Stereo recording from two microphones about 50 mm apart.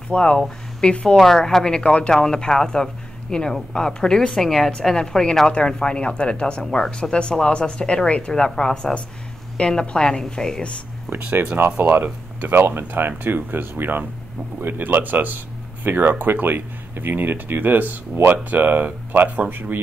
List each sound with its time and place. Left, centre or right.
0.1 s a woman's voice: centre
11.1 s speech: right